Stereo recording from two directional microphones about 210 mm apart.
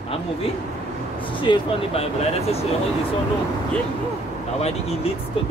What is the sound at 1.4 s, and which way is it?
Speech, 25° left (ahead or behind).